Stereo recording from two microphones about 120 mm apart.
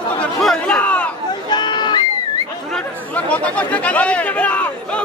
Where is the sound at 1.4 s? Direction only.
40° left (ahead or behind).